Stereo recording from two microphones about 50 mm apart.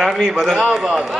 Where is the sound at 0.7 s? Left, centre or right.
Centre.